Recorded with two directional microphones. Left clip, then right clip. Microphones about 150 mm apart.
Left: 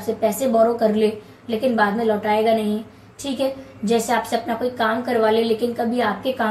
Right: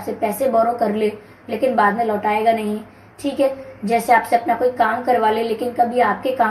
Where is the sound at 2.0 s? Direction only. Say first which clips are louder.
Right 1 dB; 50° right (ahead or behind).